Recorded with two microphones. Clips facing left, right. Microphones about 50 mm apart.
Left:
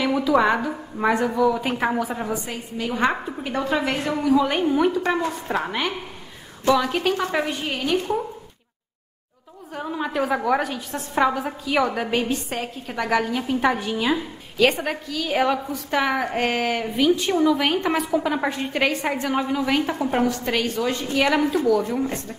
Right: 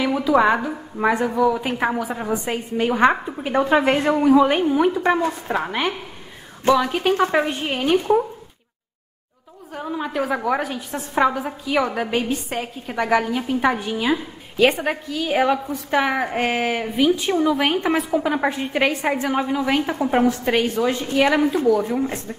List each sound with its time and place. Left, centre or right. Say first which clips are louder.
0.0 s a woman's voice: right 2 dB; centre
2.3 s a woman's voice: right 6 dB; right
4.5 s a woman's voice: right 2 dB; centre
9.7 s a woman's voice: right 1 dB; centre
17.7 s a woman's voice: right 1 dB; centre